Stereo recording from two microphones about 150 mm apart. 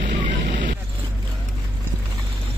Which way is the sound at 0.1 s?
60° right (ahead or behind).